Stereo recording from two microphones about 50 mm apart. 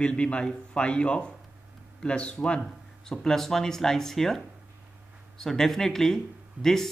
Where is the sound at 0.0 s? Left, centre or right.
Left.